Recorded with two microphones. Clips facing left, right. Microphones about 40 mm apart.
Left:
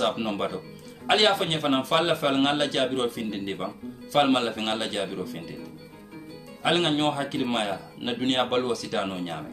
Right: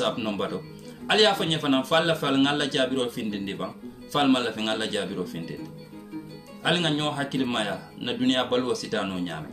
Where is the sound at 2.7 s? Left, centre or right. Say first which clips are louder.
Even; centre.